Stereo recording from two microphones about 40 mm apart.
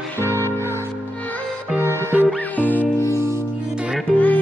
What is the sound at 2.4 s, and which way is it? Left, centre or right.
Music, left.